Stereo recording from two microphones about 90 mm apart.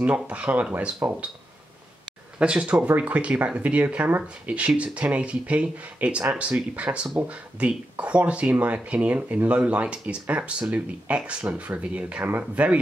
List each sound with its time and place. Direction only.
0.0 s speech: 15° right (ahead or behind)
2.3 s speech: 10° right (ahead or behind)